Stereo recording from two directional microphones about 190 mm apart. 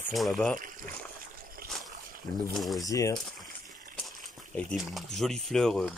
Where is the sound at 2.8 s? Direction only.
15° left (ahead or behind).